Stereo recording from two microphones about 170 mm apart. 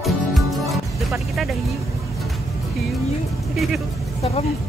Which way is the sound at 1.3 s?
Centre (ahead or behind).